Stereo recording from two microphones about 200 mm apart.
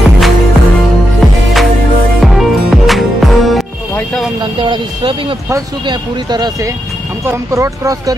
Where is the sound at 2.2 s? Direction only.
Centre (ahead or behind).